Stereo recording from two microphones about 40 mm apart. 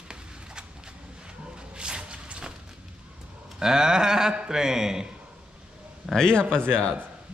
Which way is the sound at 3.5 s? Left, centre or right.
Centre.